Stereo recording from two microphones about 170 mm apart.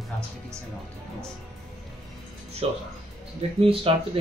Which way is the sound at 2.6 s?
35° right (ahead or behind).